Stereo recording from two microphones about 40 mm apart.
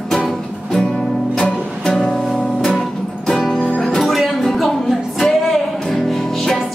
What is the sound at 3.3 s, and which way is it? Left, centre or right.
Music, centre.